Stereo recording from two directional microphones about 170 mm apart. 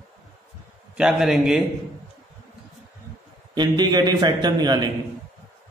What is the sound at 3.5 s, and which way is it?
Speech, 25° right (ahead or behind).